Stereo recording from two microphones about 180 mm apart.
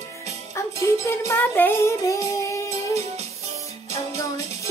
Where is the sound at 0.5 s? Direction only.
15° left (ahead or behind).